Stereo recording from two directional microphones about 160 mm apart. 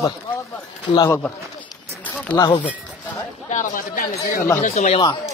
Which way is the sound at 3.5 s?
55° left (ahead or behind).